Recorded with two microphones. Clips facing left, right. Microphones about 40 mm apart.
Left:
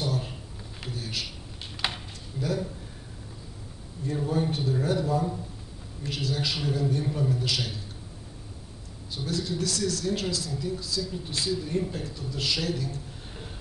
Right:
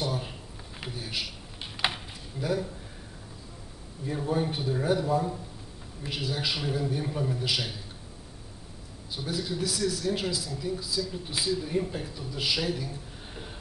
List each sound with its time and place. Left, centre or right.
0.0 s a sound: centre
2.4 s speech: centre
4.0 s speech: centre
9.1 s speech: centre